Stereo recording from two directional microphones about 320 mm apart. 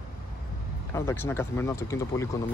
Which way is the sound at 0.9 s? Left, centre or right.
Centre.